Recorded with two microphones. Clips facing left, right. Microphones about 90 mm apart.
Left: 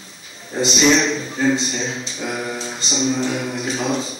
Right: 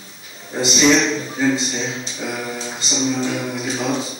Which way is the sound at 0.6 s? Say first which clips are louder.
Right 1 dB; 5° right (ahead or behind).